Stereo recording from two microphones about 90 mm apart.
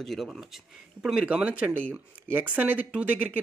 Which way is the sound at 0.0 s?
Centre (ahead or behind).